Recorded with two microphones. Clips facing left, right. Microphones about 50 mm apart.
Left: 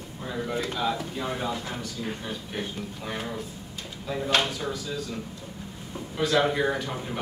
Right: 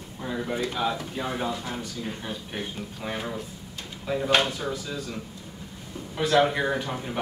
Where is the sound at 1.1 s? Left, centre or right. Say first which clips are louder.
Right 1 dB; centre.